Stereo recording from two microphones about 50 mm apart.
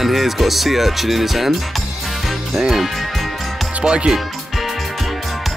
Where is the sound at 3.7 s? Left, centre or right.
Centre.